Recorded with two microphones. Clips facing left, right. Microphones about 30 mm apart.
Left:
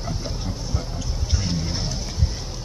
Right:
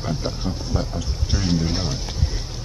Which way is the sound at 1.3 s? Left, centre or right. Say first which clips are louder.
Right 6 dB; right.